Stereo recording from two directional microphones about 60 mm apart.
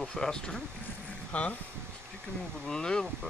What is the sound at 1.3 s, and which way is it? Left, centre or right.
Speech, left.